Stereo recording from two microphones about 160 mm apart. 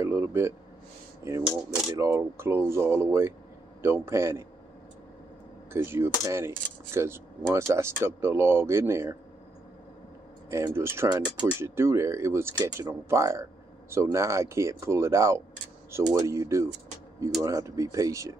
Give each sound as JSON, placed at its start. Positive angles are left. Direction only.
{"t": 0.0, "sound": "a man's voice", "side_deg": -15}
{"t": 2.0, "sound": "speech", "side_deg": -20}
{"t": 5.7, "sound": "speech", "side_deg": -15}
{"t": 10.5, "sound": "speech", "side_deg": -15}